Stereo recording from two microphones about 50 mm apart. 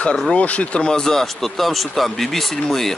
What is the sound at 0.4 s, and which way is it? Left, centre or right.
Speech, left.